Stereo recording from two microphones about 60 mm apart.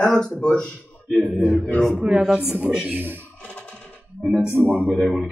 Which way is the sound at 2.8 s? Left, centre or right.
Right.